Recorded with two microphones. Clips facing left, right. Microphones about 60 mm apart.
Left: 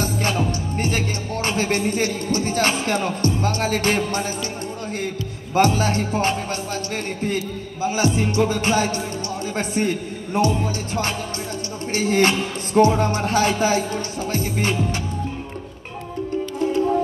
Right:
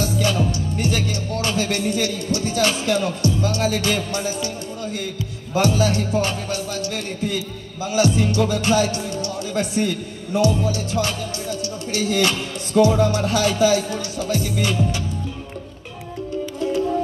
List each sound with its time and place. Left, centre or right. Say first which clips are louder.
0.0 s music: right 1 dB; left